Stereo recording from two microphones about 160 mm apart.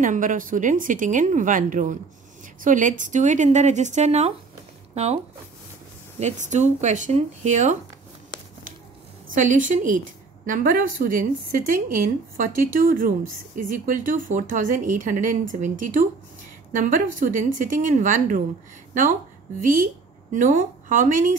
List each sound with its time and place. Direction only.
0.0 s a woman's voice: 55° right (ahead or behind)
9.3 s a woman's voice: 55° right (ahead or behind)
19.6 s a woman's voice: 55° right (ahead or behind)